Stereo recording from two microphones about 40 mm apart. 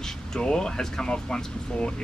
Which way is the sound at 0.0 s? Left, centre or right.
Centre.